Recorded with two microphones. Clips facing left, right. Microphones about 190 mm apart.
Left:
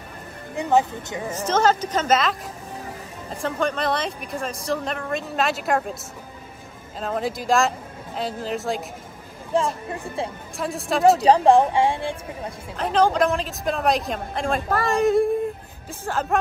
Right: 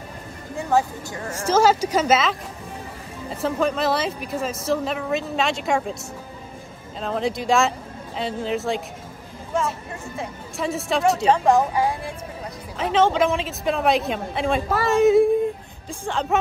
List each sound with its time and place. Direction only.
0.6 s speech: 20° left (ahead or behind)
1.3 s speech: 10° right (ahead or behind)
7.0 s speech: centre (ahead or behind)
9.5 s a woman's voice: 30° left (ahead or behind)
10.6 s speech: centre (ahead or behind)
11.2 s speech: 35° left (ahead or behind)
12.7 s speech: centre (ahead or behind)